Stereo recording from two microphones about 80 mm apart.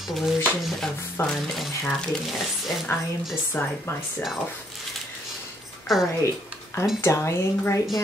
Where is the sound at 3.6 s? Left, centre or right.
Left.